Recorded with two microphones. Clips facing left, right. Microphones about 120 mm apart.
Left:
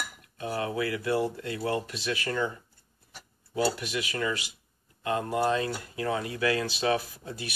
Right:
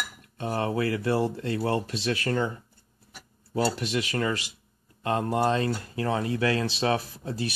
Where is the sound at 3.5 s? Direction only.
30° right (ahead or behind).